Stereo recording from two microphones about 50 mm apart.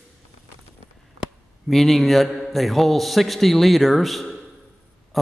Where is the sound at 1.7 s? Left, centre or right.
Centre.